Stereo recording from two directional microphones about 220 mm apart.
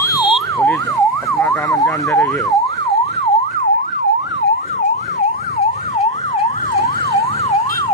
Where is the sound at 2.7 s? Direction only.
30° left (ahead or behind).